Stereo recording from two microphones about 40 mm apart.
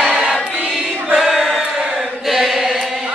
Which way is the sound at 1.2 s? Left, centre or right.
Centre.